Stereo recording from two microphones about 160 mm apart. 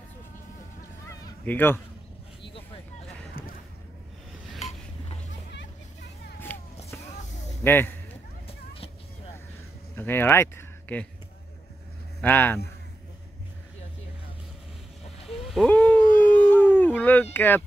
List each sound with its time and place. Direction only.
1.0 s honk: 20° left (ahead or behind)
1.4 s speech: 10° left (ahead or behind)
2.5 s vehicle: 35° left (ahead or behind)
3.4 s a sound: 65° left (ahead or behind)
7.6 s a man's voice: 15° left (ahead or behind)
8.5 s a sound: 35° left (ahead or behind)
9.9 s speech: 15° left (ahead or behind)
12.2 s speech: 10° left (ahead or behind)
15.2 s a sound: centre (ahead or behind)
15.7 s howl: 10° left (ahead or behind)